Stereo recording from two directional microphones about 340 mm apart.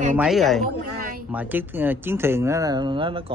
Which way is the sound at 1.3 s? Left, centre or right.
Centre.